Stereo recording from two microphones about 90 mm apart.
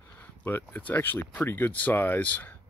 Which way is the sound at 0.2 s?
20° left (ahead or behind).